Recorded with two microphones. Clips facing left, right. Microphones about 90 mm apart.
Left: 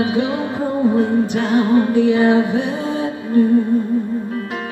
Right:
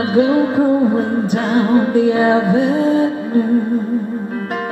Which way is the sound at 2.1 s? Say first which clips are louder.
Right 1 dB; 45° right (ahead or behind).